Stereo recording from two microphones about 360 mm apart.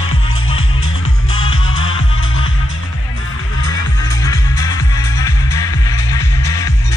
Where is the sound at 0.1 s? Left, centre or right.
Left.